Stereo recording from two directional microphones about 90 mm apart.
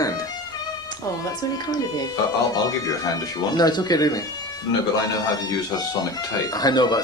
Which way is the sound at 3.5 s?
50° left (ahead or behind).